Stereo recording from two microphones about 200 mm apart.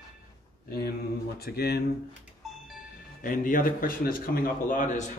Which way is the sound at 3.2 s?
40° left (ahead or behind).